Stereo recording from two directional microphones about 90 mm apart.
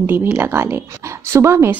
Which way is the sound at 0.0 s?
25° right (ahead or behind).